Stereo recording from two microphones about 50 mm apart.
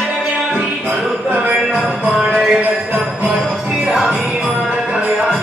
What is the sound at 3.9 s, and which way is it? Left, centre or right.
Music, centre.